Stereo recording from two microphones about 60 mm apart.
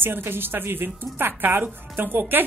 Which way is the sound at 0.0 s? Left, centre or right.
Right.